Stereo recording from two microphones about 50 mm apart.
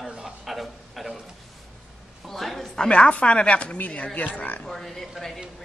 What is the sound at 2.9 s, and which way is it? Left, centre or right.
Speech, left.